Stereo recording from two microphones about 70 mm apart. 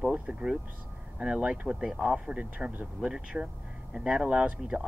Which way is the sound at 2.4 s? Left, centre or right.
Right.